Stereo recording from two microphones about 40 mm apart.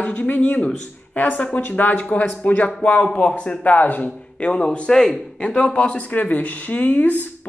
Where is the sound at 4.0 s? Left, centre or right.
Left.